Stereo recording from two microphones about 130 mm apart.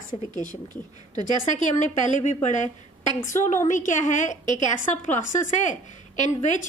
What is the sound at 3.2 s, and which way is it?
A woman's voice, 75° left (ahead or behind).